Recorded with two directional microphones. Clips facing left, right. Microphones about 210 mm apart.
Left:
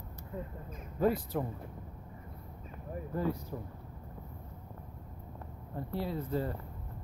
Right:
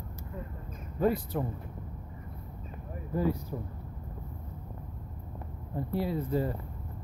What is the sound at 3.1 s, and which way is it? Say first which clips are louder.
Speech: right 4 dB; 5° right (ahead or behind).